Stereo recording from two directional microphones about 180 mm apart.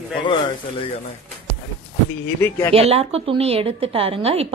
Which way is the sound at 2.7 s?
35° right (ahead or behind).